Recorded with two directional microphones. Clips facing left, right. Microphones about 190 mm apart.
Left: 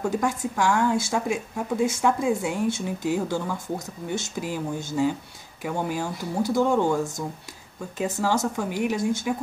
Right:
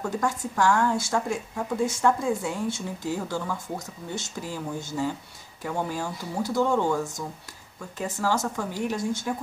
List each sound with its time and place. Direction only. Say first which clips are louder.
0.2 s a woman's voice: left 1 dB; 15° left (ahead or behind)
8.0 s a woman's voice: left 3 dB; 20° left (ahead or behind)